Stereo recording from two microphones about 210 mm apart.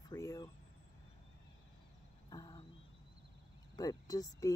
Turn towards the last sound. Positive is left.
turn(degrees=15)  # may be behind; listen again after turning